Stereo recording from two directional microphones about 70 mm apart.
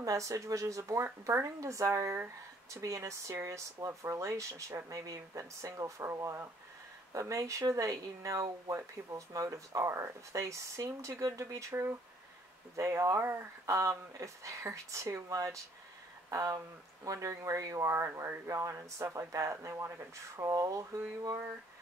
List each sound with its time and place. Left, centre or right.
0.0 s speech: right
11.7 s speech: right
12.7 s speech: right
20.4 s speech: right